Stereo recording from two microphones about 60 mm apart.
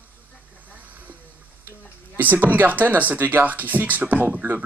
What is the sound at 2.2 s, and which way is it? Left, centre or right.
Speech, right.